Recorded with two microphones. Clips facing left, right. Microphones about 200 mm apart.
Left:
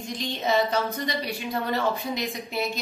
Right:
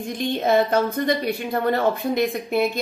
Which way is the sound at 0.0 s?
55° right (ahead or behind).